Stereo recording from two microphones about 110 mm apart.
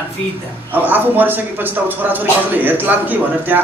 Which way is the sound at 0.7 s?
15° right (ahead or behind).